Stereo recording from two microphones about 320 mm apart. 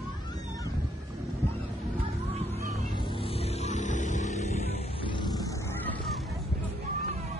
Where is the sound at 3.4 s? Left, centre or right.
Left.